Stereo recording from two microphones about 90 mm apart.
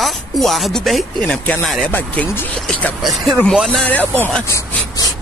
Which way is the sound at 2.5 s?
10° left (ahead or behind).